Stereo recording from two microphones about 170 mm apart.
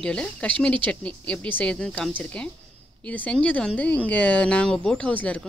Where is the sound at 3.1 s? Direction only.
10° left (ahead or behind).